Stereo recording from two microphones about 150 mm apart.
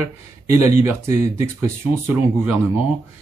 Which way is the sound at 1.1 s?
50° left (ahead or behind).